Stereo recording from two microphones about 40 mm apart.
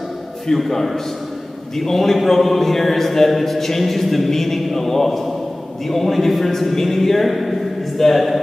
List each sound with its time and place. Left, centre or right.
0.6 s a man's voice: centre